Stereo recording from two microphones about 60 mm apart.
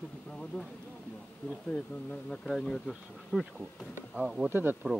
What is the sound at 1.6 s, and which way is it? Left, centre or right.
Speech, left.